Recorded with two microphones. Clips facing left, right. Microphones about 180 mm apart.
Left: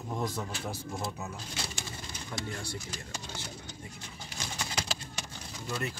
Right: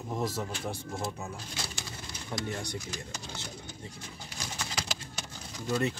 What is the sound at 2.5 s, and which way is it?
Speech, 20° right (ahead or behind).